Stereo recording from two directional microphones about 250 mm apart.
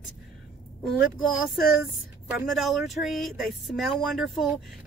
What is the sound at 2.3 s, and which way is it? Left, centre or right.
Speech, centre.